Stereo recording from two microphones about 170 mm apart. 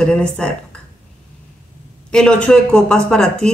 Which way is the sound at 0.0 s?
5° left (ahead or behind).